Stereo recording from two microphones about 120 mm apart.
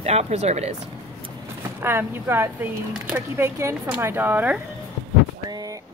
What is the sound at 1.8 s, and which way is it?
Speech, 20° right (ahead or behind).